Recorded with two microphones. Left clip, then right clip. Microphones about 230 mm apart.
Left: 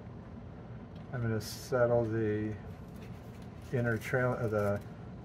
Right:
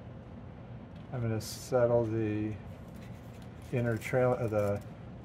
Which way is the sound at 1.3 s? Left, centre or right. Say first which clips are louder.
Right 3 dB; right.